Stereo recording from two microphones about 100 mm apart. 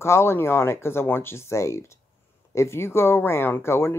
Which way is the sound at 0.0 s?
25° left (ahead or behind).